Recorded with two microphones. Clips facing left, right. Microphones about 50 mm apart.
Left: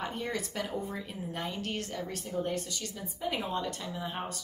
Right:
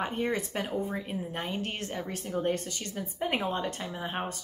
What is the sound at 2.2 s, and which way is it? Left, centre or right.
Speech, right.